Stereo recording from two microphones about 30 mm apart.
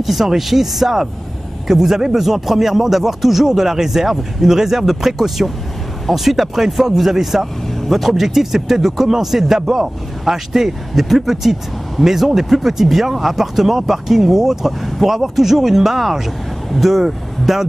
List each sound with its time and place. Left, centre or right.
0.0 s speech: centre
2.2 s speech: centre